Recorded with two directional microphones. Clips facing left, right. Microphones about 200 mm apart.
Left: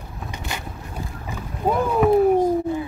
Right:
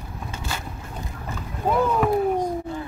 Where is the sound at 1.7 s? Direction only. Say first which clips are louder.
Left 3 dB; 15° left (ahead or behind).